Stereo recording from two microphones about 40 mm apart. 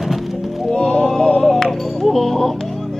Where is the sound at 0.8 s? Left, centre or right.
Centre.